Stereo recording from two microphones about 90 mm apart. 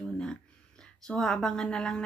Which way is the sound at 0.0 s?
5° left (ahead or behind).